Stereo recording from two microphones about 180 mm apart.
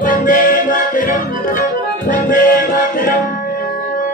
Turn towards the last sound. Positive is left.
turn(degrees=50)  # may be behind; listen again after turning